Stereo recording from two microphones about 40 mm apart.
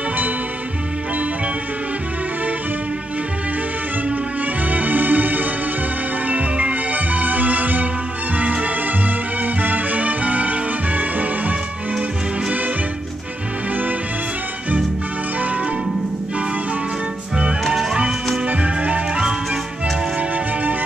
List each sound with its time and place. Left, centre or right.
4.6 s music: right
17.6 s music: centre
18.5 s music: right
19.1 s music: centre
20.2 s music: right